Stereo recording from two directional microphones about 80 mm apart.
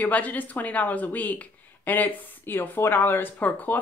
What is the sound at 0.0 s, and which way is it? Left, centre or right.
Speech, left.